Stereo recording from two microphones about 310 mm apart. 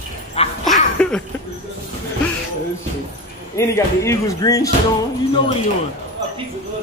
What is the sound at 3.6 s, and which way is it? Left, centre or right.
Speech, centre.